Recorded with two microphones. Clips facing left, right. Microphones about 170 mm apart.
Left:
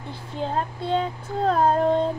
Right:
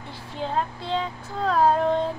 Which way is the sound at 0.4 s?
45° left (ahead or behind).